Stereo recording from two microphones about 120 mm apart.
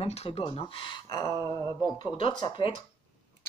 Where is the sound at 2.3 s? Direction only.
35° left (ahead or behind).